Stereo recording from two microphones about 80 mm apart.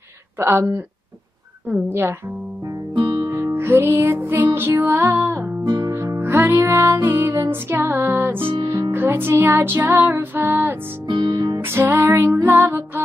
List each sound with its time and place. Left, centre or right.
0.4 s music: right
2.9 s music: right
3.3 s music: right
5.9 s music: right
11.1 s music: right
11.6 s music: right